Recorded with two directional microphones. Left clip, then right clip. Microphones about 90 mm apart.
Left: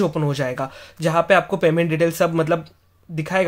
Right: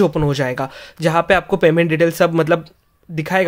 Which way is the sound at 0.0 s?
45° right (ahead or behind).